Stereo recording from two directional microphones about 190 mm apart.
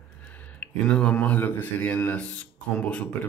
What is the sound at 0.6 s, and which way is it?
Speech, 5° left (ahead or behind).